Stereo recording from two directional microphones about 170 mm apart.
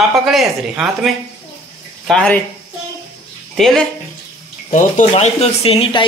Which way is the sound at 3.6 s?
Centre (ahead or behind).